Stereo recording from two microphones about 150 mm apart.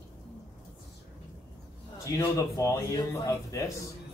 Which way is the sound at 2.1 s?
20° left (ahead or behind).